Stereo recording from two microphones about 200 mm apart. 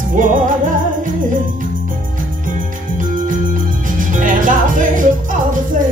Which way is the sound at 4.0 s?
40° right (ahead or behind).